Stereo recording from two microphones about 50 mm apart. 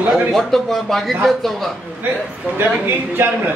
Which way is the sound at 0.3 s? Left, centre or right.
Centre.